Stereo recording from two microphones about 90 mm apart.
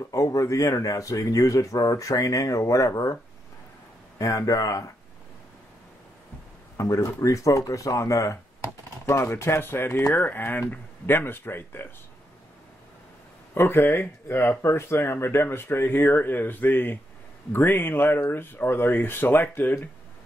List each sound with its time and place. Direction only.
0.1 s speech: 40° left (ahead or behind)
4.2 s speech: 40° left (ahead or behind)
6.8 s speech: 35° left (ahead or behind)
13.6 s speech: 25° left (ahead or behind)